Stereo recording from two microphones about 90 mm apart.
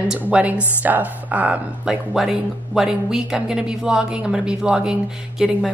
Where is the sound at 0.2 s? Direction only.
15° right (ahead or behind).